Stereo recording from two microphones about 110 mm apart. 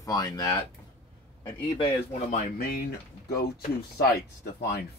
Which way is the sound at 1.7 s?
50° left (ahead or behind).